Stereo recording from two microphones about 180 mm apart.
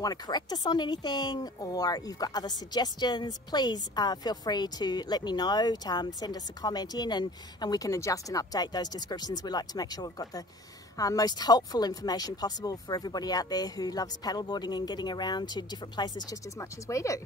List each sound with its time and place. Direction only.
0.0 s speech: 20° left (ahead or behind)